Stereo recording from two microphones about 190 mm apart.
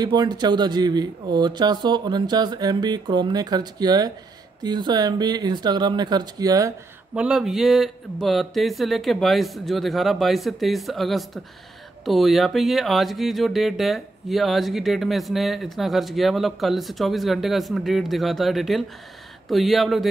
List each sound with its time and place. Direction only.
0.0 s speech: 20° right (ahead or behind)
7.2 s speech: 5° right (ahead or behind)